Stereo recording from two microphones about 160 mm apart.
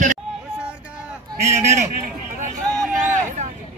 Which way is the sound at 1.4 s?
15° right (ahead or behind).